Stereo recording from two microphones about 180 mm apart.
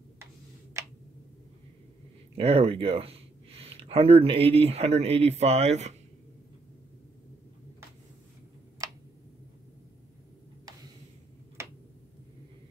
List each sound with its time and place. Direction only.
2.3 s speech: 35° right (ahead or behind)
11.6 s tick-tock: 15° right (ahead or behind)